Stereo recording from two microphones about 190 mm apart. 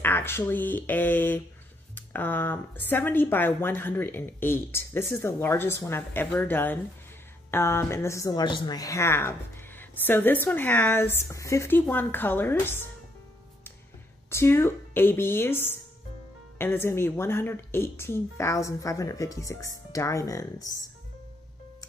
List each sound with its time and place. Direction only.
0.0 s speech: 10° left (ahead or behind)
14.3 s speech: 15° left (ahead or behind)